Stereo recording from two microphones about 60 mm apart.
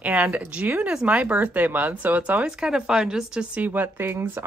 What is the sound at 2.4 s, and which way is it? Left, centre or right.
Speech, centre.